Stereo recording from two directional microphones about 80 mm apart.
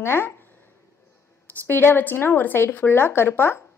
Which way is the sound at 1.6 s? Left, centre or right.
Left.